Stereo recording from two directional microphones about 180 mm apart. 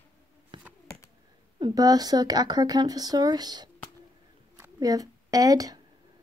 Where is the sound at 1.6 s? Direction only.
20° right (ahead or behind).